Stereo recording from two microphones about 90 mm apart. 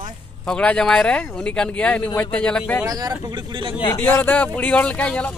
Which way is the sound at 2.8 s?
40° right (ahead or behind).